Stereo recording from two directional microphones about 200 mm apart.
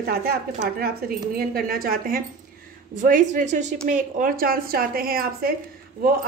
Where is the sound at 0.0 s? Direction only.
50° right (ahead or behind).